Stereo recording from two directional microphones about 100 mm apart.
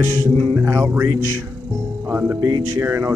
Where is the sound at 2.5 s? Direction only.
40° right (ahead or behind).